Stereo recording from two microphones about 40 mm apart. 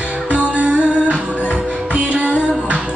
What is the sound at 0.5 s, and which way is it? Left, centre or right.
Music, right.